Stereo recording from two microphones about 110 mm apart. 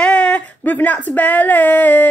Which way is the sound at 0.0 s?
10° left (ahead or behind).